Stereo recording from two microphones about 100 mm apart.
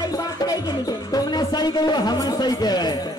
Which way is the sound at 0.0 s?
40° left (ahead or behind).